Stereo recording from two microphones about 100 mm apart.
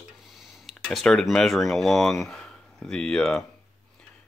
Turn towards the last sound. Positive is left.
turn(degrees=10)  # may be behind; listen again after turning